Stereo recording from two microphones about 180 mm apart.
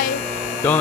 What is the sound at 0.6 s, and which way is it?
Mains hum, 10° left (ahead or behind).